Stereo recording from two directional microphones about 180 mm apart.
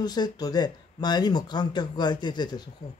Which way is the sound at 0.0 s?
20° left (ahead or behind).